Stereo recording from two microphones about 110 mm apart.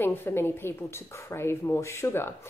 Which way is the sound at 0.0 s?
20° left (ahead or behind).